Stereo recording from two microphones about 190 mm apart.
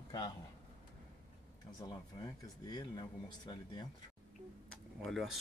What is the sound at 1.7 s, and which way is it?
Speech, 20° left (ahead or behind).